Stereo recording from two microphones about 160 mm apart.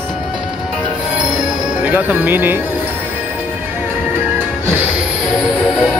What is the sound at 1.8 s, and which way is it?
Speech, 10° right (ahead or behind).